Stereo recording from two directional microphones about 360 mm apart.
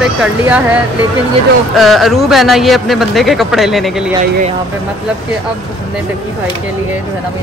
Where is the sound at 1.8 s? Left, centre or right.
Centre.